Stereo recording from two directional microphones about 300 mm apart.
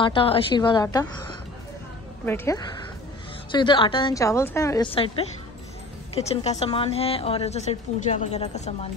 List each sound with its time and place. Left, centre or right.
0.0 s a woman's voice: centre
2.2 s a woman's voice: centre